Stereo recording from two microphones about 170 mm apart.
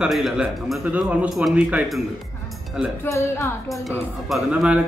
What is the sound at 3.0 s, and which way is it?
Speech, 15° left (ahead or behind).